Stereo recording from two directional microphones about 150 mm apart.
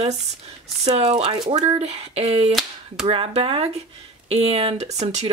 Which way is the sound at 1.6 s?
45° right (ahead or behind).